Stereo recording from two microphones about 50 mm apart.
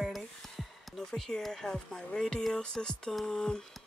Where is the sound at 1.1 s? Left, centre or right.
Centre.